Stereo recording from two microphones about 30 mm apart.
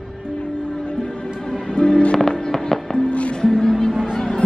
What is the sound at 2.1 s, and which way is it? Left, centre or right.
Music, centre.